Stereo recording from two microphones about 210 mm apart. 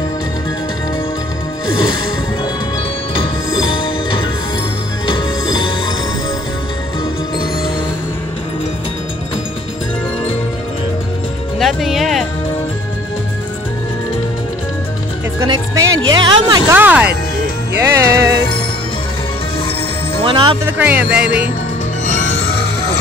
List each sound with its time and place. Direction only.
3.5 s music: 25° left (ahead or behind)
11.6 s music: centre (ahead or behind)
15.4 s music: 15° right (ahead or behind)
16.7 s music: 5° right (ahead or behind)
20.2 s music: 25° right (ahead or behind)
20.6 s music: 10° right (ahead or behind)